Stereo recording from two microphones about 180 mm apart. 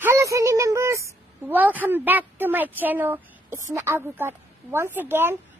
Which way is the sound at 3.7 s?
10° right (ahead or behind).